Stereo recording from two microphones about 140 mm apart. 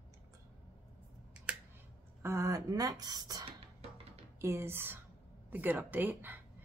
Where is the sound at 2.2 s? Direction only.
20° right (ahead or behind).